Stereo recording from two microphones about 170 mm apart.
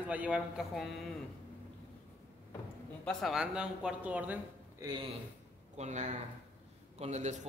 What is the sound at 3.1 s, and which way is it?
Speech, centre (ahead or behind).